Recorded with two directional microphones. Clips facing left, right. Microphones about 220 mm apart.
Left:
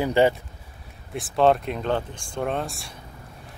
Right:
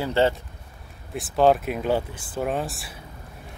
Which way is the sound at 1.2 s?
Centre (ahead or behind).